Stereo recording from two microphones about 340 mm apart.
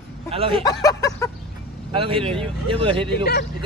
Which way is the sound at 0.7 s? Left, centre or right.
Centre.